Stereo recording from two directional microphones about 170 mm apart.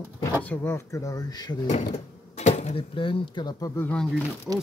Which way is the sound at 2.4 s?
45° left (ahead or behind).